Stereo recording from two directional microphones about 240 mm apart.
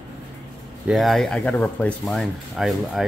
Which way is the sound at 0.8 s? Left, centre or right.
Centre.